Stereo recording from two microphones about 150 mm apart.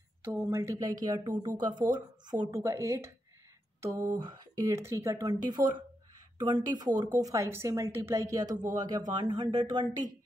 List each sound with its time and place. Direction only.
0.2 s a woman's voice: 15° right (ahead or behind)